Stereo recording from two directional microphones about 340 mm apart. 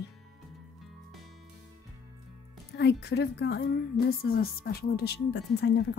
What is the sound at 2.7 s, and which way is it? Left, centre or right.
A woman's voice, left.